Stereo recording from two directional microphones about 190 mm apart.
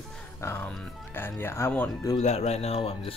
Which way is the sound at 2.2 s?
35° left (ahead or behind).